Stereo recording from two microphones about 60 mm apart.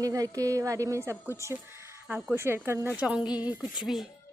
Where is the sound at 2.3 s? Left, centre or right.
Right.